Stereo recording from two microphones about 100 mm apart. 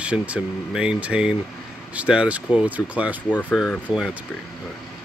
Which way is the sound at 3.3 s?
15° left (ahead or behind).